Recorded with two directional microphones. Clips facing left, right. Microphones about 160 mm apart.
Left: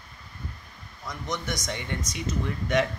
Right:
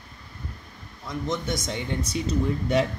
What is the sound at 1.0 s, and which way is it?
Speech, 25° right (ahead or behind).